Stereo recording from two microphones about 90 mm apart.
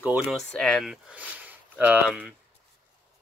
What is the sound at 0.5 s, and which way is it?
Speech, 10° left (ahead or behind).